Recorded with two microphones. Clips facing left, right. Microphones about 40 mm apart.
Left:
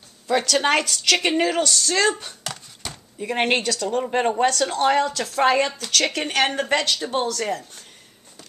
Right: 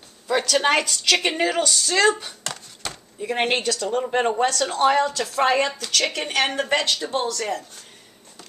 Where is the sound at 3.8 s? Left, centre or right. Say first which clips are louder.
Even; centre.